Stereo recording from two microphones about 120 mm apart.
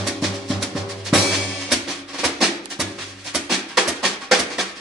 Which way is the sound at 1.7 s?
Centre (ahead or behind).